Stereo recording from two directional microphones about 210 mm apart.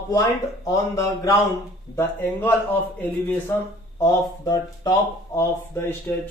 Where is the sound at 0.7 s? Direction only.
15° left (ahead or behind).